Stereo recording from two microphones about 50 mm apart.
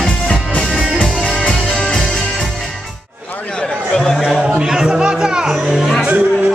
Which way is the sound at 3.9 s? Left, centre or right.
Centre.